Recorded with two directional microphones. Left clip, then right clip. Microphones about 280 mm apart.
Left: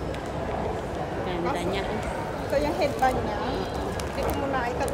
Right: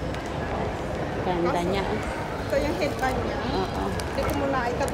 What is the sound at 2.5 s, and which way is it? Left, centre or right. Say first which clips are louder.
Speech: left 1 dB; centre.